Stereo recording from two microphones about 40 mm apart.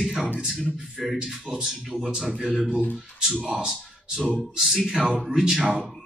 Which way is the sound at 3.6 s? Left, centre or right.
Centre.